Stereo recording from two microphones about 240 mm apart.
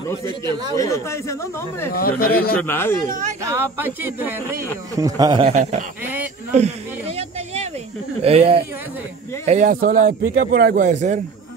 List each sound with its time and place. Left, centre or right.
0.5 s speech: centre
0.7 s speech: centre
2.0 s speech: left
2.5 s speech: centre
3.1 s a man's voice: right
3.4 s a man's voice: centre; by 11.1 s right